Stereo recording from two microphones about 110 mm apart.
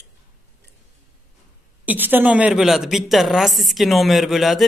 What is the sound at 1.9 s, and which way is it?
A woman's voice, 15° right (ahead or behind).